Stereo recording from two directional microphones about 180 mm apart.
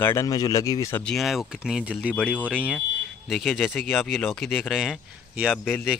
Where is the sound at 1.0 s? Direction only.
Centre (ahead or behind).